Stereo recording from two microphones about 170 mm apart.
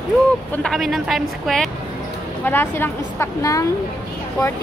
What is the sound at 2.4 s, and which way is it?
A woman's voice, 10° left (ahead or behind).